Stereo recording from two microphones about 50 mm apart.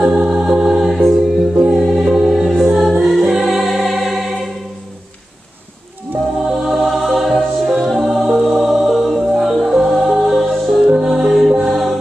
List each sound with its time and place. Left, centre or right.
0.0 s music: centre
1.5 s music: right
1.8 s music: centre
6.4 s music: centre